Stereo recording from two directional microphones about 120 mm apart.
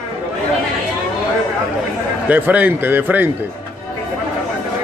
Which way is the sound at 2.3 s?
15° right (ahead or behind).